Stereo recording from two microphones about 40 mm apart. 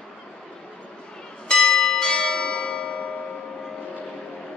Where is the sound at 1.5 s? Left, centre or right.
Centre.